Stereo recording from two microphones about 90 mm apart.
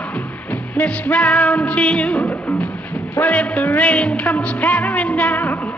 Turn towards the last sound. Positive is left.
turn(degrees=15)  # may be behind; listen again after turning